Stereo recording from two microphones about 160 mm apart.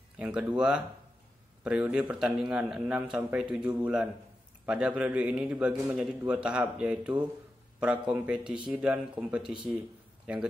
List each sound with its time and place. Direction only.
0.2 s a man's voice: 5° right (ahead or behind)